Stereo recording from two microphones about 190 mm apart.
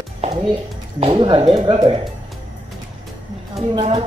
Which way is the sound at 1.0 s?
25° right (ahead or behind).